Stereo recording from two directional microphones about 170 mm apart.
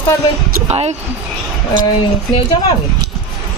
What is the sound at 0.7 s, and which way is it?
Speech, 40° right (ahead or behind).